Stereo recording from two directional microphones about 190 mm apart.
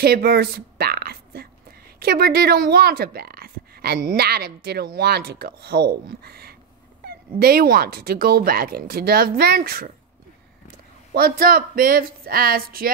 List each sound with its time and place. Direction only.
0.0 s a woman's voice: 55° right (ahead or behind)
11.1 s speech: 50° right (ahead or behind)